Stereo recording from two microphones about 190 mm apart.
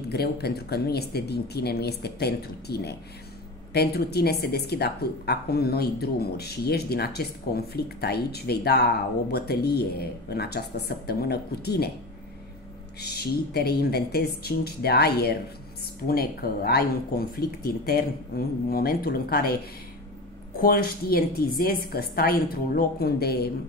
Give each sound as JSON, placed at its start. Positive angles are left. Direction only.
{"t": 0.1, "sound": "speech", "side_deg": 55}
{"t": 13.0, "sound": "speech", "side_deg": 55}